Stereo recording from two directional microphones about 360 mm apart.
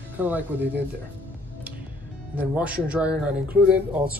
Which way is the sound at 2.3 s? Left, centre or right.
Centre.